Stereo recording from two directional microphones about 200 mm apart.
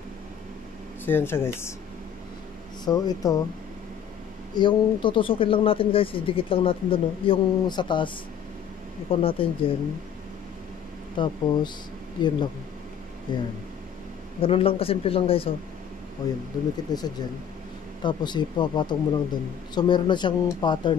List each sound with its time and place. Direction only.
1.0 s speech: 10° left (ahead or behind)
2.8 s speech: 20° left (ahead or behind)
4.6 s speech: 25° left (ahead or behind)
9.1 s speech: 25° left (ahead or behind)
11.1 s speech: 20° left (ahead or behind)